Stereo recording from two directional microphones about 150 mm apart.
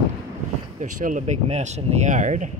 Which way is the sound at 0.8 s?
55° right (ahead or behind).